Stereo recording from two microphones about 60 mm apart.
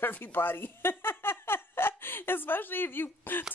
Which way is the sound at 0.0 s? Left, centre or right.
Left.